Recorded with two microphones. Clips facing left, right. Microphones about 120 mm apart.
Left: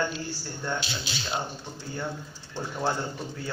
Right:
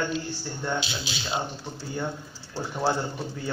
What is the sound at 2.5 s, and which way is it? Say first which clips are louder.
Speech: right 3 dB; 10° right (ahead or behind).